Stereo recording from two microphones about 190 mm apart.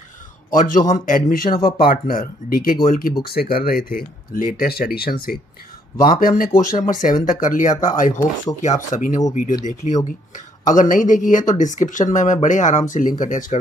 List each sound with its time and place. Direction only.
0.5 s speech: 45° left (ahead or behind)